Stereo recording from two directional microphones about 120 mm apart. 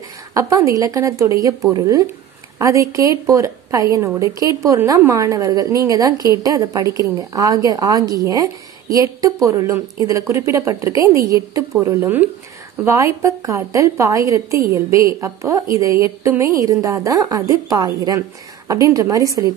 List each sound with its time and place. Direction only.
0.3 s a woman's voice: 25° right (ahead or behind)